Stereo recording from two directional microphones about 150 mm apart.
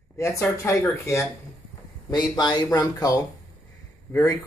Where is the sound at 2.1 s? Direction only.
30° left (ahead or behind).